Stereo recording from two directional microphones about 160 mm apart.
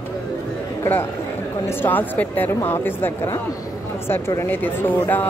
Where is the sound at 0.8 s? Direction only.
15° left (ahead or behind).